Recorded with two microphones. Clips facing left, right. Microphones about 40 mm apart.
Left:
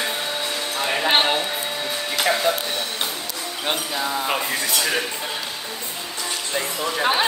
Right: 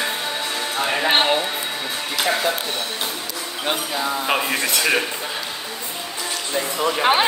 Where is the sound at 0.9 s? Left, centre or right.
Centre.